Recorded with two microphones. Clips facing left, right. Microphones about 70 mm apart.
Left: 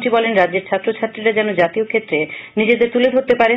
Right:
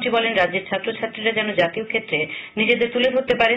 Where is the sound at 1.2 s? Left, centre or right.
Left.